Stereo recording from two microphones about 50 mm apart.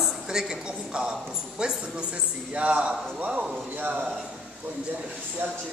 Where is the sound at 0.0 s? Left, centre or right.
Centre; by 4.1 s right.